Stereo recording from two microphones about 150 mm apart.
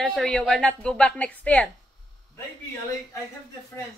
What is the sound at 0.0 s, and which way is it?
A woman's voice, centre (ahead or behind).